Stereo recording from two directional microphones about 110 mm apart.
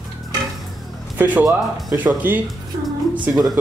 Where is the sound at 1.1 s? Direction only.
15° right (ahead or behind).